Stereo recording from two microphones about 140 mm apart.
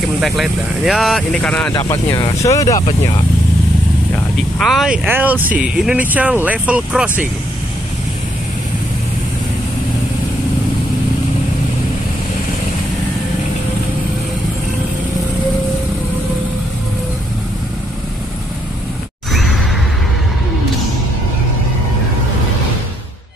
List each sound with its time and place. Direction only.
0.2 s speech: centre (ahead or behind)
2.4 s speech: 25° left (ahead or behind)
4.6 s speech: centre (ahead or behind)